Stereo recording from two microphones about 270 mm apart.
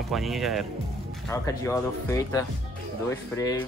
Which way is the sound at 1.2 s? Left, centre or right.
Centre.